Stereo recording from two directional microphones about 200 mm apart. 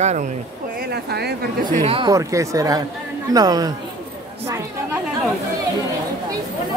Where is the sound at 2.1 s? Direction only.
15° right (ahead or behind).